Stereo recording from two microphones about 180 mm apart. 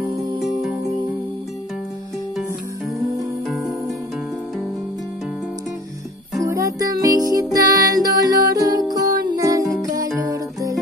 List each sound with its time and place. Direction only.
3.2 s music: centre (ahead or behind)
6.4 s music: 20° right (ahead or behind)